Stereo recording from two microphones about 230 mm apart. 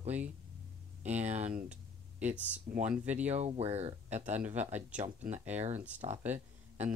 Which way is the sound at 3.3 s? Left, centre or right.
Right.